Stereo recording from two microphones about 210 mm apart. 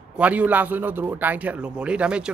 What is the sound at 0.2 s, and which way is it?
A man's voice, 5° right (ahead or behind).